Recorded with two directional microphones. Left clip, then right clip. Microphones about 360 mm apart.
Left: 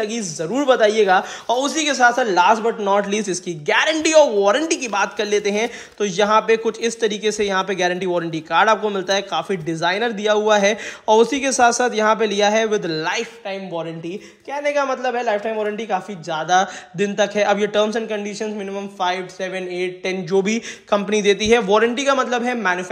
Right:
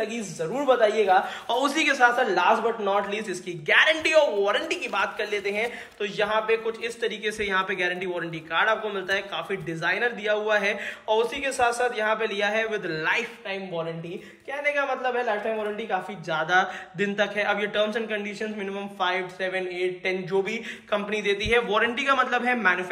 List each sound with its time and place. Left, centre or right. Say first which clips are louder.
0.1 s speech: left 6 dB; left
1.5 s a man's voice: left 4 dB; centre